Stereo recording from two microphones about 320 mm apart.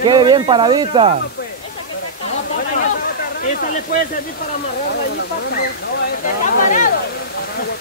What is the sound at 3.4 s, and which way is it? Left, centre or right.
Speech, left.